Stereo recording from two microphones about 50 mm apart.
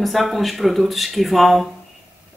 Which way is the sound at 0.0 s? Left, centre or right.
Centre.